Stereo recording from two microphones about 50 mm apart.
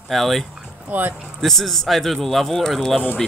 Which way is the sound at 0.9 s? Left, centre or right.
Right.